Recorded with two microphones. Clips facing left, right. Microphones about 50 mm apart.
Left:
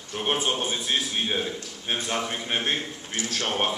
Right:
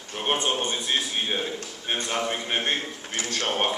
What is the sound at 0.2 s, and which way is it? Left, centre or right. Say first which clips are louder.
A man's voice: right 1 dB; centre.